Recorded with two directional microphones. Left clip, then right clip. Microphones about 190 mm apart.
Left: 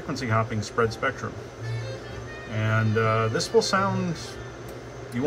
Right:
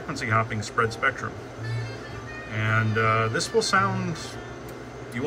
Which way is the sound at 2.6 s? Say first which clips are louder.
Right 1 dB; 20° left (ahead or behind).